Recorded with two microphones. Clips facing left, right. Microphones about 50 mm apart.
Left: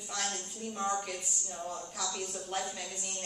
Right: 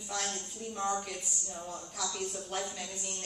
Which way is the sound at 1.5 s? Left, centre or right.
Centre.